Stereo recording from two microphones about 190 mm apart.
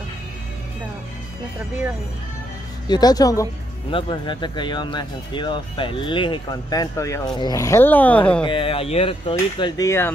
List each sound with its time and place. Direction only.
2.9 s speech: 20° left (ahead or behind)
8.5 s speech: 30° left (ahead or behind)